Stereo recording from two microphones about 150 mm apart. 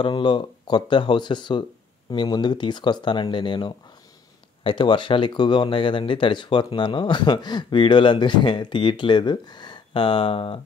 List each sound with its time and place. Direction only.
0.0 s speech: 30° left (ahead or behind)